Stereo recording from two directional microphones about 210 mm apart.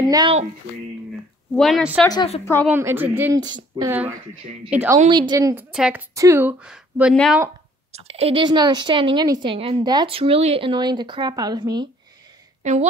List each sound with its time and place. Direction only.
0.1 s speech: 20° right (ahead or behind)
1.5 s a woman's voice: centre (ahead or behind)
2.0 s a woman's voice: 25° left (ahead or behind)
2.4 s a woman's voice: 10° left (ahead or behind)
2.7 s a woman's voice: 10° right (ahead or behind)
5.0 s a woman's voice: 20° right (ahead or behind); by 7.4 s centre (ahead or behind)
7.9 s a woman's voice: 30° right (ahead or behind)
12.6 s a woman's voice: 35° right (ahead or behind)